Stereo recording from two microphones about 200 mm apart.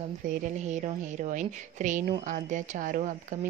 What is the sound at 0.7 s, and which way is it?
Speech, 35° right (ahead or behind).